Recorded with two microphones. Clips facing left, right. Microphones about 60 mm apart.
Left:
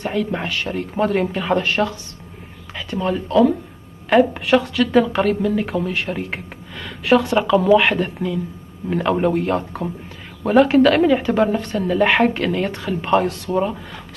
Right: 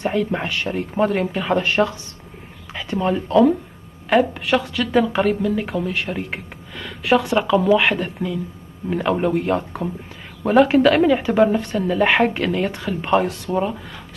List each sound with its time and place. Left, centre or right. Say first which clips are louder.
0.0 s speech: right 1 dB; centre
1.6 s speech: right 1 dB; centre
4.1 s speech: left 3 dB; centre